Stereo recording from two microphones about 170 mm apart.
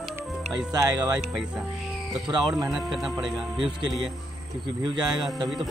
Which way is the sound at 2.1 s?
25° right (ahead or behind).